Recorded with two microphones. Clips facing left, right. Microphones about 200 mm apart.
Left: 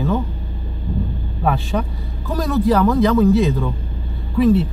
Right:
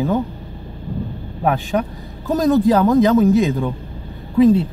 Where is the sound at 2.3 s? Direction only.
20° right (ahead or behind).